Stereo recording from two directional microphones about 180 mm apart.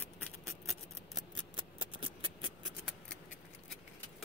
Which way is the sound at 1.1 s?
25° right (ahead or behind).